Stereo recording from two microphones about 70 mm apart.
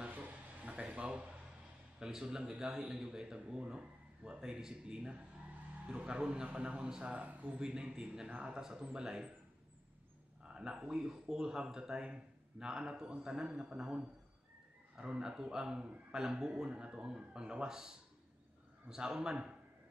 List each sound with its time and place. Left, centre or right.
0.0 s a sound: right
2.0 s speech: centre
10.4 s speech: centre